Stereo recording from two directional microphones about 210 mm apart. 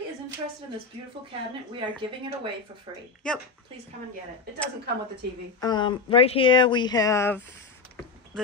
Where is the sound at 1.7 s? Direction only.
25° right (ahead or behind).